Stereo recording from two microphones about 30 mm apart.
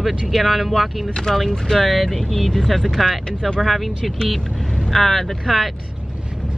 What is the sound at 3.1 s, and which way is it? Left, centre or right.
Speech, left.